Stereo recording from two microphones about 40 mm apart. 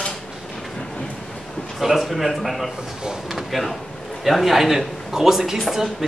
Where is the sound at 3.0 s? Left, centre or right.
Centre.